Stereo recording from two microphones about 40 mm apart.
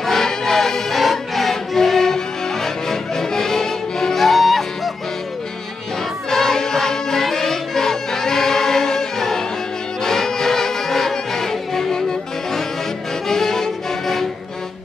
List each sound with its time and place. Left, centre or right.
0.0 s music: centre
6.3 s music: centre